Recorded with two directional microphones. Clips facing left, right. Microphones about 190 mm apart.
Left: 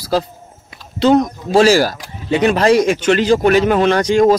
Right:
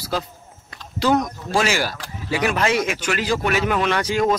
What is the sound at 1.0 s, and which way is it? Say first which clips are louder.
Speech: left 7 dB; 25° left (ahead or behind).